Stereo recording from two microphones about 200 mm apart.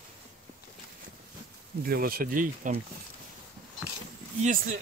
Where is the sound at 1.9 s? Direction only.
50° right (ahead or behind).